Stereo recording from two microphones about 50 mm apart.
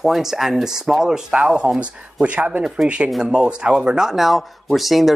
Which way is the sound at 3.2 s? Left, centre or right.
Centre.